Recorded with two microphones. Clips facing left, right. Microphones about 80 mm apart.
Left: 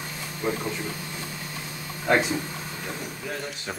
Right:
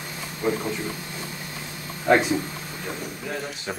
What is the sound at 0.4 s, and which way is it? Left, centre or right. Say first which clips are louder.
Speech: right 3 dB; centre.